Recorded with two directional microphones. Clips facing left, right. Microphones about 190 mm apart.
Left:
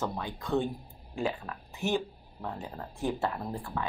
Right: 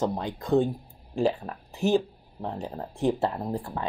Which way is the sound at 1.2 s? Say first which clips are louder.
Right 7 dB; 35° right (ahead or behind).